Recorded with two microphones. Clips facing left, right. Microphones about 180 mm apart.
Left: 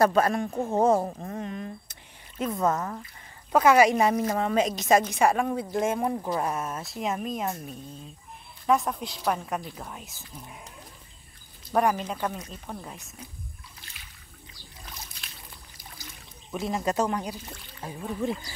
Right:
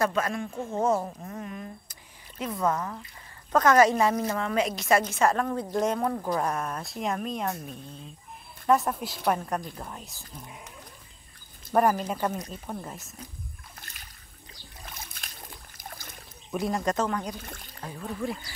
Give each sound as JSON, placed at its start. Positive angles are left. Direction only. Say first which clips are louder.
{"t": 0.0, "sound": "speech", "louder": "left 5 dB", "side_deg": 35}
{"t": 3.5, "sound": "a woman's voice", "louder": "left 1 dB", "side_deg": 10}
{"t": 11.7, "sound": "speech", "louder": "right 1 dB", "side_deg": 0}
{"t": 13.7, "sound": "a sound", "louder": "right 2 dB", "side_deg": -45}
{"t": 15.2, "sound": "a sound", "louder": "right 1 dB", "side_deg": -45}
{"t": 15.8, "sound": "boat", "louder": "right 4 dB", "side_deg": -50}
{"t": 16.5, "sound": "a woman's voice", "louder": "even", "side_deg": 0}
{"t": 17.4, "sound": "speech", "louder": "right 1 dB", "side_deg": -55}
{"t": 17.7, "sound": "a woman's voice", "louder": "left 2 dB", "side_deg": 15}